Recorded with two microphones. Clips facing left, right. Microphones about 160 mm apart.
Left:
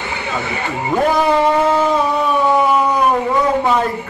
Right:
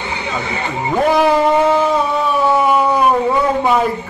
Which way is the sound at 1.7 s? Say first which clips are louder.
Right 1 dB; 5° right (ahead or behind).